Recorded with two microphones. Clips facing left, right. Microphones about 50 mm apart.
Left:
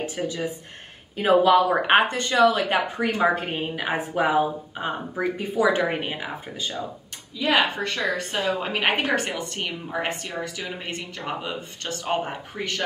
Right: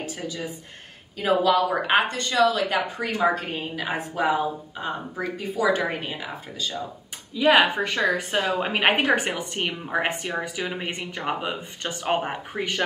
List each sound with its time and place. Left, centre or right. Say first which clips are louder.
0.2 s speech: left 4 dB; left
7.3 s speech: right 4 dB; centre
8.4 s a woman's voice: even; right
8.6 s speech: right 3 dB; centre